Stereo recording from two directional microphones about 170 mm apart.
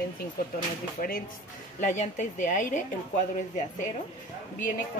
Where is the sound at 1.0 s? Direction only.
50° left (ahead or behind).